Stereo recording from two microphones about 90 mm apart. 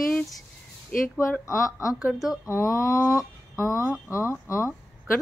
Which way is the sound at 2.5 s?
35° left (ahead or behind).